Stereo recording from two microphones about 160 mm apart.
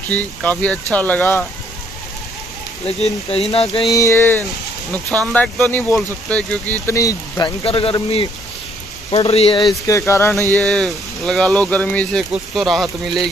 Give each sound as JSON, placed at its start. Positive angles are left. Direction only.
{"t": 0.1, "sound": "speech", "side_deg": 10}
{"t": 3.0, "sound": "speech", "side_deg": 40}
{"t": 3.9, "sound": "speech", "side_deg": 20}
{"t": 7.0, "sound": "speech", "side_deg": 20}
{"t": 10.6, "sound": "speech", "side_deg": 0}